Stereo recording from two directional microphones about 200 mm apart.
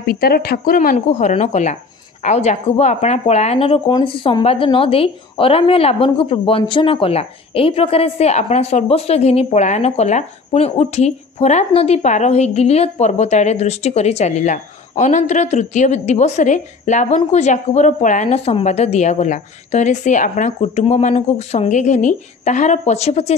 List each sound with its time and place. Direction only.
0.0 s speech: 50° left (ahead or behind)
0.9 s speech: 35° left (ahead or behind)